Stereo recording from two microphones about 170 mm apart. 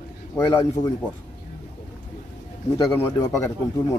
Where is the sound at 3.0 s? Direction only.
20° left (ahead or behind).